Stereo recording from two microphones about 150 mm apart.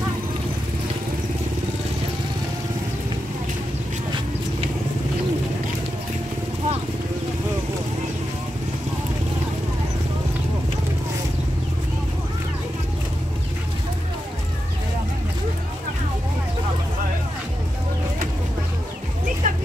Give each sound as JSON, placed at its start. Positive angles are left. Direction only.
{"t": 19.4, "sound": "vehicle", "side_deg": -60}